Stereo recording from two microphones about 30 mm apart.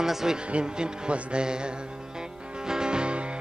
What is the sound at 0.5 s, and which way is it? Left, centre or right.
Music, right.